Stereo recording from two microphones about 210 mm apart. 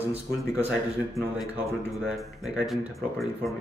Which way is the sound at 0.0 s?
30° right (ahead or behind).